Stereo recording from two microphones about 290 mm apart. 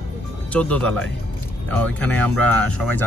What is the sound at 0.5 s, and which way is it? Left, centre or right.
Speech, centre.